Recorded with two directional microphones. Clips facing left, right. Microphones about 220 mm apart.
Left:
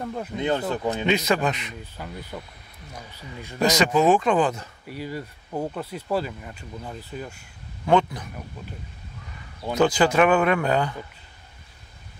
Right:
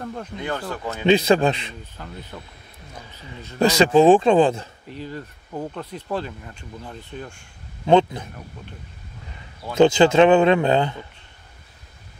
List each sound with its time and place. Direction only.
0.0 s speech: 5° left (ahead or behind)
0.4 s speech: 20° left (ahead or behind)
1.0 s speech: 30° right (ahead or behind)
2.0 s speech: 10° left (ahead or behind)
3.5 s speech: 30° right (ahead or behind)
4.8 s speech: 10° left (ahead or behind)
7.8 s speech: 25° right (ahead or behind)
9.8 s speech: 25° right (ahead or behind)